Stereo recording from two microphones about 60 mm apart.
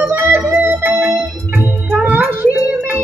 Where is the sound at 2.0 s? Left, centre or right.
Right.